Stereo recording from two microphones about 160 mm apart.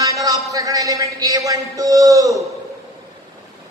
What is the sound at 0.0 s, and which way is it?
A man's voice, 20° right (ahead or behind).